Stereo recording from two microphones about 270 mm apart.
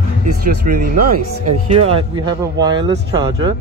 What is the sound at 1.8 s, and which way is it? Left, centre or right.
Speech, right.